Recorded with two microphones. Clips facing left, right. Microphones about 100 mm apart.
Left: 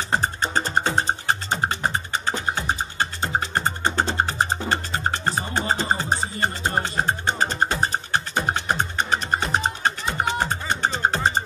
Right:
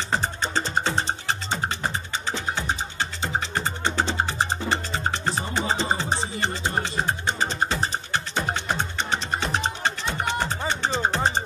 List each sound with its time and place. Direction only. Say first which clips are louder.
0.1 s music: left 3 dB; 45° left (ahead or behind)